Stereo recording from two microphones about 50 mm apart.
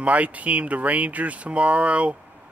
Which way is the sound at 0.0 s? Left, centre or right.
Right.